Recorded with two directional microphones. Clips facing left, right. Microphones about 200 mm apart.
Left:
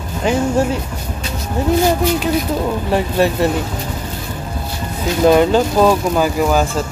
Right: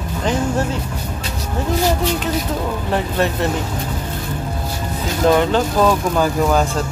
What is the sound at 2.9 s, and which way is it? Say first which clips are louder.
Speech: left 4 dB; 10° left (ahead or behind).